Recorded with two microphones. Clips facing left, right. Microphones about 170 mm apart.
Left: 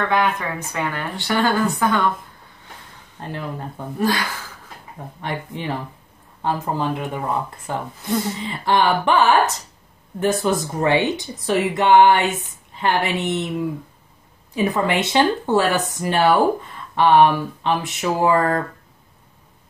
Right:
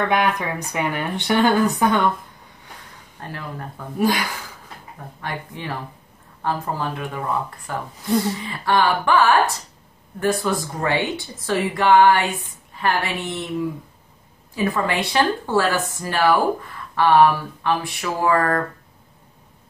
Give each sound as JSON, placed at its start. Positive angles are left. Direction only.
{"t": 0.1, "sound": "speech", "side_deg": -15}
{"t": 3.2, "sound": "speech", "side_deg": 20}
{"t": 4.0, "sound": "speech", "side_deg": -15}
{"t": 5.2, "sound": "speech", "side_deg": 25}